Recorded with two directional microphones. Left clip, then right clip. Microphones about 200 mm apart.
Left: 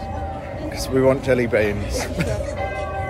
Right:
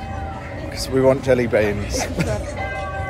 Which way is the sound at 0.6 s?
15° left (ahead or behind).